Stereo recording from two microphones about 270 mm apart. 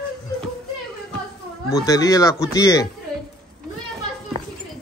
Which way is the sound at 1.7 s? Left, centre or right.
Centre.